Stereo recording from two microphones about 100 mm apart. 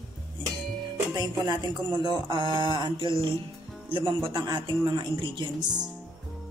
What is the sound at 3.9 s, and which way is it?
Speech, 60° right (ahead or behind).